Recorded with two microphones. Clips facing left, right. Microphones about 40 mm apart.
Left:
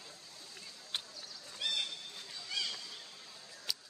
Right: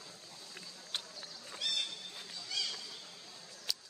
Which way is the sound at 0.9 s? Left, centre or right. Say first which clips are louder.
Even; centre.